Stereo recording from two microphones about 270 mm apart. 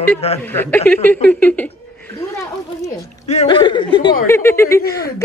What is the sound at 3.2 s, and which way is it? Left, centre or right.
Speech, left.